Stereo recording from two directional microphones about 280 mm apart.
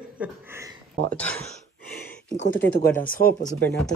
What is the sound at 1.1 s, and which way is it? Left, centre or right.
Speech, centre.